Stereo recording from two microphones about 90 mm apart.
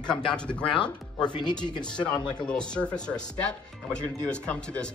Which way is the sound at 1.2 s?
55° left (ahead or behind).